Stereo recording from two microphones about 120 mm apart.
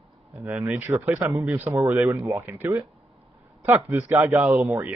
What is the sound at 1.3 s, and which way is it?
Speech, 15° right (ahead or behind).